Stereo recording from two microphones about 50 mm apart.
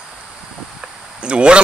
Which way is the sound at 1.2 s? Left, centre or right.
Right.